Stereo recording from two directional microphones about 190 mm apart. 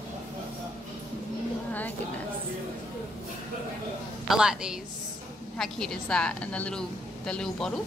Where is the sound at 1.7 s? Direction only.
10° left (ahead or behind).